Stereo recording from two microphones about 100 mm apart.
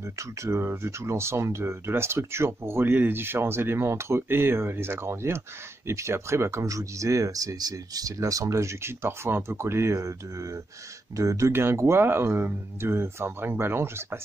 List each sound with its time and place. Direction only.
0.0 s speech: 30° right (ahead or behind)